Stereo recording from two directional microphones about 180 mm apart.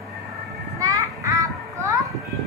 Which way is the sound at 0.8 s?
20° right (ahead or behind).